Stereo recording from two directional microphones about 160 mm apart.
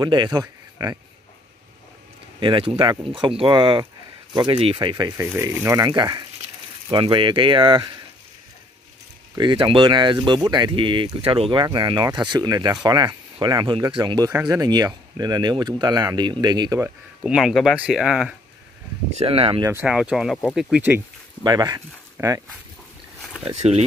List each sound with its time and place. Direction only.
0.0 s speech: 25° right (ahead or behind)
2.4 s speech: 30° right (ahead or behind)
5.1 s speech: 15° right (ahead or behind)
9.3 s speech: 30° right (ahead or behind)
14.3 s speech: 15° right (ahead or behind)
17.2 s speech: 5° right (ahead or behind)
19.1 s speech: 35° right (ahead or behind)
19.6 s speech: 10° right (ahead or behind)
21.4 s speech: 25° right (ahead or behind)
22.2 s speech: 15° right (ahead or behind)
23.6 s speech: 40° right (ahead or behind)